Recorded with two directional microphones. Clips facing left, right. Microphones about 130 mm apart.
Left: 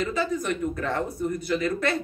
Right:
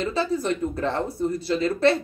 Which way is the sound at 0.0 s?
30° right (ahead or behind).